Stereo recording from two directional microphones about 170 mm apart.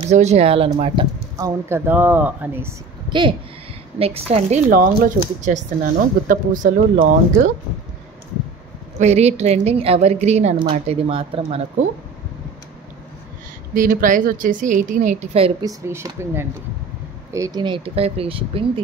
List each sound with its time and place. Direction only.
0.1 s a woman's voice: 40° right (ahead or behind)
1.4 s speech: 10° right (ahead or behind)
3.1 s a woman's voice: 30° right (ahead or behind)
4.6 s a woman's voice: 55° right (ahead or behind)
8.9 s a woman's voice: 40° right (ahead or behind)
13.7 s a woman's voice: 50° right (ahead or behind)
15.6 s a woman's voice: 15° right (ahead or behind); by 18.7 s 35° right (ahead or behind)